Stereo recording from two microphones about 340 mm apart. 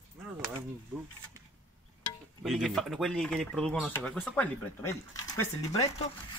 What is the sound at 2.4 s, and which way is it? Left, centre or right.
Speech, centre.